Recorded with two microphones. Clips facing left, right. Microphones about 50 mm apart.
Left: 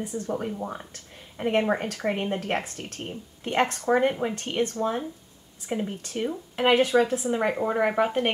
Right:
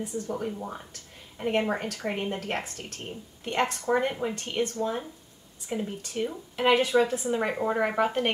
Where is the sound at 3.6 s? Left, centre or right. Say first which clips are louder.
Left 2 dB; centre.